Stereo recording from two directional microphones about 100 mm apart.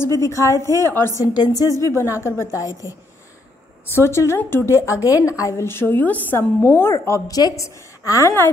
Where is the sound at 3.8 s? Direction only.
25° left (ahead or behind).